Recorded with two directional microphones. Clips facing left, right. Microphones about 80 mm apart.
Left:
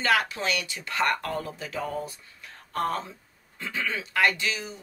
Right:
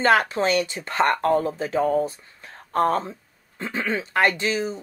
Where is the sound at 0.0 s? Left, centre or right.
Right.